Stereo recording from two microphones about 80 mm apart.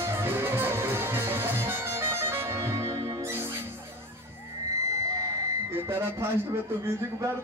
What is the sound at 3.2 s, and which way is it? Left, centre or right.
Music, right.